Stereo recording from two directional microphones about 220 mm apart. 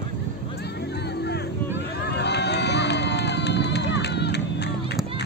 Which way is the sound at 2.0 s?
50° left (ahead or behind).